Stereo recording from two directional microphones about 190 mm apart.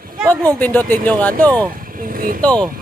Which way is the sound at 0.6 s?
10° left (ahead or behind).